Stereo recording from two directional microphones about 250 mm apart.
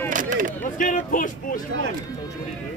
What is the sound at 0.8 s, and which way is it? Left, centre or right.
Speech, left.